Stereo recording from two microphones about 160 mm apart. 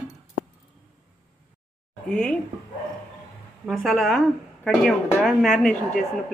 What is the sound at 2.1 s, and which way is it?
Speech, 5° left (ahead or behind).